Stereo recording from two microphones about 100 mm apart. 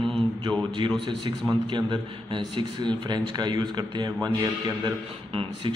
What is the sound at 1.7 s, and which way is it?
A man's voice, 50° right (ahead or behind).